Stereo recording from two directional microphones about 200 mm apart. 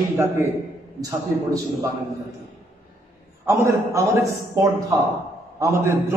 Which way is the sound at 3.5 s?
15° right (ahead or behind).